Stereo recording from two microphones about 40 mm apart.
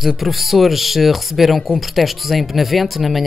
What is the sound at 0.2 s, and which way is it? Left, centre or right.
Speech, centre.